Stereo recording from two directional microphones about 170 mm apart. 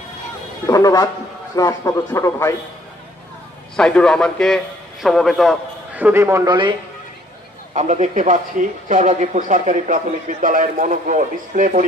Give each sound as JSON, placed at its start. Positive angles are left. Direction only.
{"t": 0.7, "sound": "a man's voice", "side_deg": 20}
{"t": 3.7, "sound": "a man's voice", "side_deg": 5}
{"t": 7.7, "sound": "speech", "side_deg": -45}